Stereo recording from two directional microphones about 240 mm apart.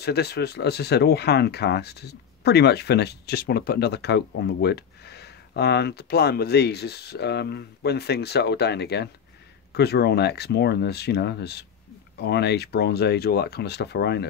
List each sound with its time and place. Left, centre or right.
0.0 s speech: left